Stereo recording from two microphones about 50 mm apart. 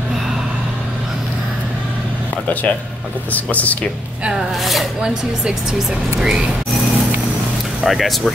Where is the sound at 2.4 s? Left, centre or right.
Left.